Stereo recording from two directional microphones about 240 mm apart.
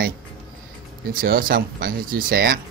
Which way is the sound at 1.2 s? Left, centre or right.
Right.